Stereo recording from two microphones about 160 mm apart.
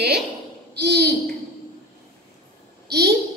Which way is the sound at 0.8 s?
90° right.